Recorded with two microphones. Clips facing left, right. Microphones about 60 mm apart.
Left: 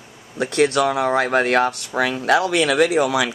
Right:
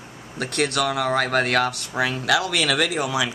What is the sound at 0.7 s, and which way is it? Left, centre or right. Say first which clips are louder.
Speech: left 4 dB; left.